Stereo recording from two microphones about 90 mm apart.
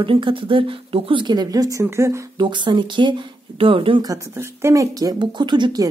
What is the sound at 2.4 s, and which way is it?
Speech, 60° right (ahead or behind).